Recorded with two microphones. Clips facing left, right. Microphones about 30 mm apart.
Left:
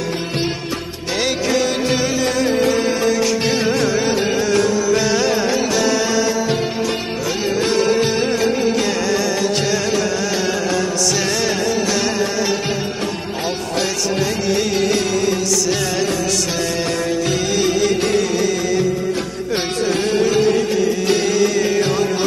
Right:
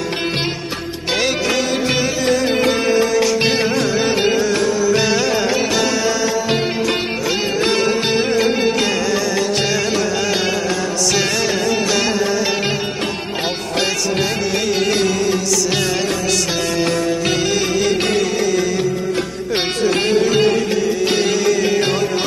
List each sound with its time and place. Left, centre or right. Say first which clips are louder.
1.9 s music: right 1 dB; centre
3.4 s music: right 1 dB; centre
7.2 s music: even; right
7.7 s music: left 2 dB; centre
14.6 s music: right 2 dB; centre
16.5 s music: right 2 dB; centre
19.9 s music: right 1 dB; right
21.2 s music: even; centre